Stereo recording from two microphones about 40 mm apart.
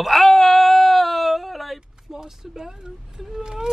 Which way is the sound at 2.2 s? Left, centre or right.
Centre.